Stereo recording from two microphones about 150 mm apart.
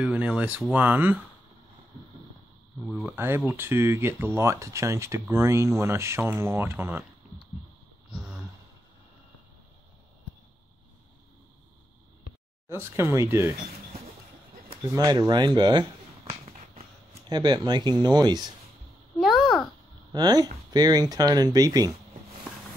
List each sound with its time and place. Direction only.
0.0 s speech: 10° right (ahead or behind)
2.9 s speech: 10° right (ahead or behind)
8.1 s a sound: 5° right (ahead or behind)
12.6 s speech: 15° right (ahead or behind)
14.9 s speech: 25° right (ahead or behind)
16.3 s a sound: 45° right (ahead or behind)
17.3 s speech: 30° right (ahead or behind)
19.1 s a sound: centre (ahead or behind)
20.1 s speech: 25° right (ahead or behind)